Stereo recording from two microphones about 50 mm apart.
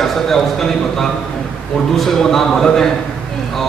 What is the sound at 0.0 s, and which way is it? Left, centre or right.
A man's voice, centre.